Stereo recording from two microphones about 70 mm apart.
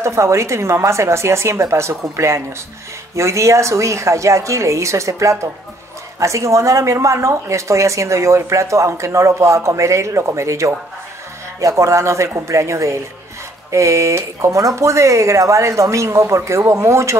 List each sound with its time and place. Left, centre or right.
0.0 s speech: right